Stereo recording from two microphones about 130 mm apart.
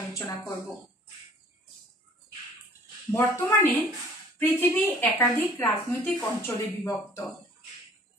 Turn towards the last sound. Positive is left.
turn(degrees=25)  # may be behind; listen again after turning